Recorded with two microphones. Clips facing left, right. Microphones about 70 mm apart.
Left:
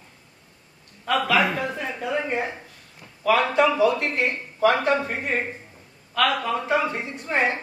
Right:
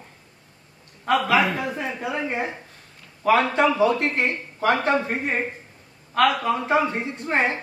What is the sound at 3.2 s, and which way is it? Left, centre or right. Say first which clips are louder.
Speech: right 1 dB; right.